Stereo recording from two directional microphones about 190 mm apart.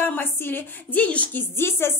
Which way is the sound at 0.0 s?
10° left (ahead or behind).